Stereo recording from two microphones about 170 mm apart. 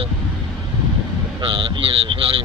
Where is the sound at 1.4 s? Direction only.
30° right (ahead or behind).